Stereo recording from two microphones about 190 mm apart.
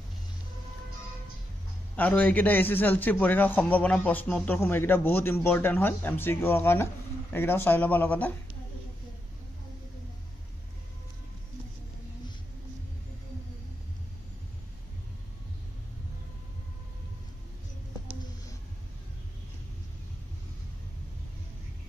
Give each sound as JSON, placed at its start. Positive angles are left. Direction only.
{"t": 2.0, "sound": "a man's voice", "side_deg": 10}